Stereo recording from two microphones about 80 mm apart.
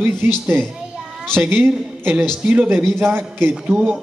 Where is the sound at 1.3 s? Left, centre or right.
Right.